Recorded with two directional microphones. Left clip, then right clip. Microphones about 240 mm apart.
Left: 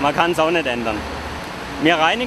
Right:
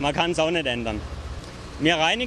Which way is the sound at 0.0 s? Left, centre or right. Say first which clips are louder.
Left 6 dB; right.